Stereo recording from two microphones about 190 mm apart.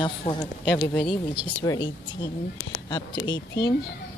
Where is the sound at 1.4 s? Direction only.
25° left (ahead or behind).